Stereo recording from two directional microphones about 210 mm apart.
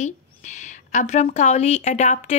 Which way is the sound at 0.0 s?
35° left (ahead or behind).